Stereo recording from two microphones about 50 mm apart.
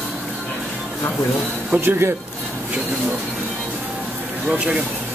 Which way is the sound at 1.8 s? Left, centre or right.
Right.